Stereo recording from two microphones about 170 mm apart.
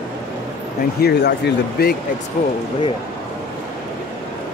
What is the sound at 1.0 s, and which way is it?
Speech, 70° left (ahead or behind).